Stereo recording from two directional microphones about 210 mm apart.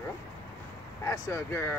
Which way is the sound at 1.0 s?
15° left (ahead or behind).